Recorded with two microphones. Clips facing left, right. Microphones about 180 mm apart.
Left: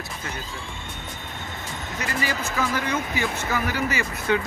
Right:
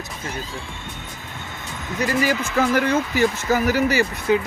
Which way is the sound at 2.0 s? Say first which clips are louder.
Right 8 dB; 50° right (ahead or behind).